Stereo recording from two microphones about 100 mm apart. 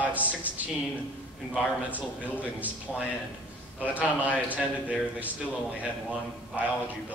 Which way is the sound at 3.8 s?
15° right (ahead or behind).